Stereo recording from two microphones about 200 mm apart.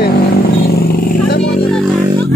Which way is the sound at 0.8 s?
50° left (ahead or behind).